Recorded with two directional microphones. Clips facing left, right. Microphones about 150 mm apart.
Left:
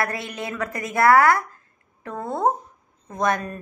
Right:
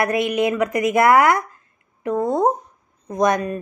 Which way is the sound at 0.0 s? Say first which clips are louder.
Right 9 dB; 20° right (ahead or behind).